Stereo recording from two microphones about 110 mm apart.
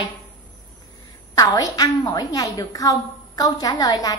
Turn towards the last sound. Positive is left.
turn(degrees=35)  # may be behind; listen again after turning